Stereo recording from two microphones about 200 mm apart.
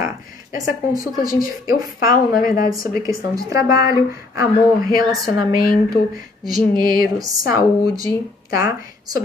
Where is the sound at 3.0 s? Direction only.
15° right (ahead or behind).